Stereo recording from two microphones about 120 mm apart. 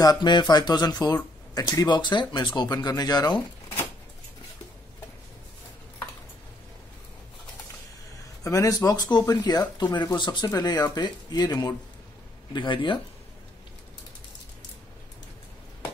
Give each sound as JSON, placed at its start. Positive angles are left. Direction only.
{"t": 0.0, "sound": "speech", "side_deg": 35}
{"t": 8.5, "sound": "speech", "side_deg": 30}